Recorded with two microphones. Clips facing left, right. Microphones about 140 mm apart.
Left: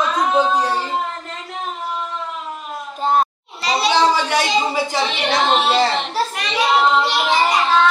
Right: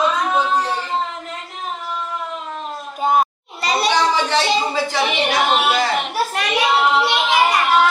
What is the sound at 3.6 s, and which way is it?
Children playing, 45° right (ahead or behind).